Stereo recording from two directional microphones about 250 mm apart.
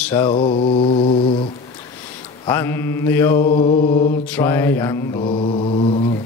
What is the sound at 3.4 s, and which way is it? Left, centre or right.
Mantra, left.